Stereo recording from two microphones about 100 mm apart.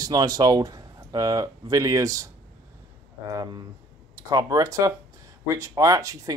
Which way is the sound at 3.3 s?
45° right (ahead or behind).